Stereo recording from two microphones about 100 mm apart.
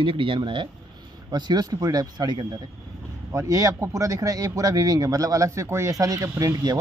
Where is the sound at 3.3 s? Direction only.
30° right (ahead or behind).